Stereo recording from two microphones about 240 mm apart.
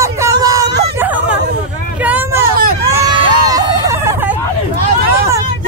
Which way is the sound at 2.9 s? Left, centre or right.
Centre.